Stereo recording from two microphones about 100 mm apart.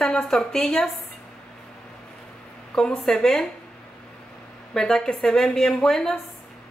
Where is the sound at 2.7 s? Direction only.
5° left (ahead or behind).